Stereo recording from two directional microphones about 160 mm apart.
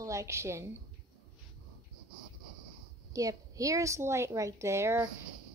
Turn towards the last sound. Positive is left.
turn(degrees=-15)  # may be behind; listen again after turning